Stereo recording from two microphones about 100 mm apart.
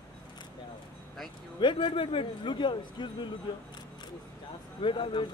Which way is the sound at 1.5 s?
55° left (ahead or behind).